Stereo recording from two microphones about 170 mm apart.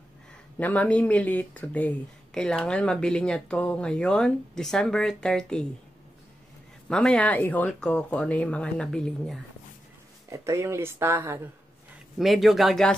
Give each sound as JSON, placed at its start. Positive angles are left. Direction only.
{"t": 0.6, "sound": "speech", "side_deg": 10}
{"t": 6.9, "sound": "speech", "side_deg": 5}
{"t": 10.3, "sound": "speech", "side_deg": -15}
{"t": 12.2, "sound": "speech", "side_deg": 0}